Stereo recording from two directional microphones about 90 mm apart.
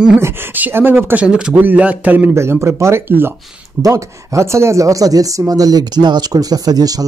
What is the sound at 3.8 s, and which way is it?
Speech, 35° right (ahead or behind).